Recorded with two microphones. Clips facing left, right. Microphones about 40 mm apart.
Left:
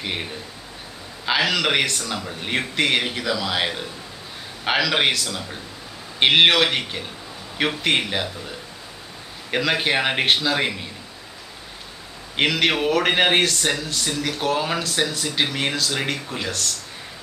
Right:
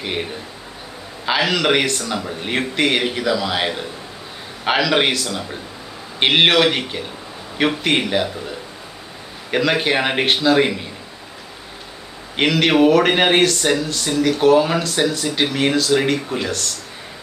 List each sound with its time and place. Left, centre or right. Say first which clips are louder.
0.0 s speech: right 4 dB; centre
12.4 s speech: right 5 dB; centre